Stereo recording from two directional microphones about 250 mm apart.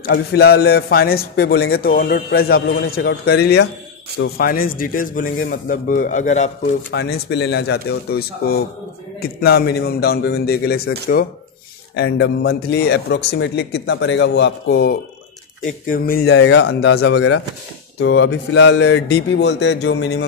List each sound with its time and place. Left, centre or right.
0.0 s a man's voice: left
6.9 s a man's voice: left
16.3 s speech: left
17.9 s speech: left